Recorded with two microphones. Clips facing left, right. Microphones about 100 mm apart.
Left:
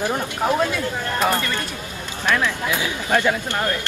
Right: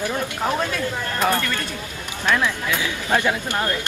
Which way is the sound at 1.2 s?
15° left (ahead or behind).